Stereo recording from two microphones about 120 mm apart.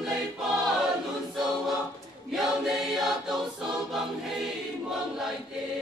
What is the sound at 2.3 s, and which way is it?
Choir, centre (ahead or behind).